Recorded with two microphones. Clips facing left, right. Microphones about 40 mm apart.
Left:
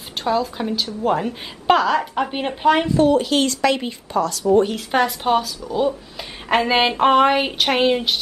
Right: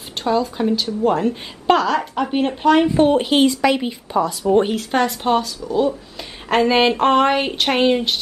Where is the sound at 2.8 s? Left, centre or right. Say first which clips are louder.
Right 1 dB; right; by 4.0 s centre.